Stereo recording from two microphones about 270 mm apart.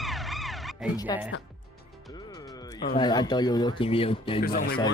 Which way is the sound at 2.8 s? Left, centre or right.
Centre.